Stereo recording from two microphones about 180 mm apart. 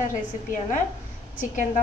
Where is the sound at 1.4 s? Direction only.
45° left (ahead or behind).